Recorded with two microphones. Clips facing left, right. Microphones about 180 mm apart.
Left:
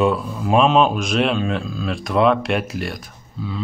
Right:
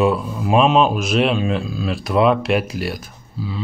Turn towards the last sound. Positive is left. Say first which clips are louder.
# right 1 dB
turn(degrees=-5)  # may be behind; listen again after turning